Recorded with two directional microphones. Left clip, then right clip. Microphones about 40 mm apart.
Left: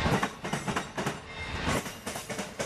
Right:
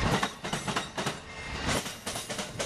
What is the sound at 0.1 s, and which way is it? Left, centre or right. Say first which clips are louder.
Train: even; right.